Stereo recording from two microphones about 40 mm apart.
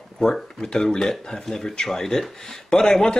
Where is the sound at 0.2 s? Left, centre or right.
Centre.